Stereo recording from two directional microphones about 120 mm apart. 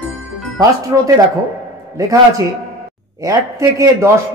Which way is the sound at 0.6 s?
30° right (ahead or behind).